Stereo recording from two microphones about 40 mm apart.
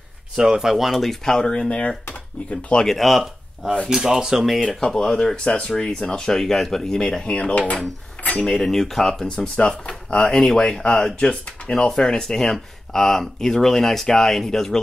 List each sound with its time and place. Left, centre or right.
0.4 s speech: centre
0.7 s speech: centre
1.2 s speech: centre
3.0 s speech: centre
3.9 s speech: centre
4.6 s speech: centre
5.4 s speech: left
5.8 s speech: centre
7.5 s dishes: left
8.4 s speech: centre
9.3 s speech: centre
10.2 s speech: centre
11.1 s speech: left
11.7 s speech: centre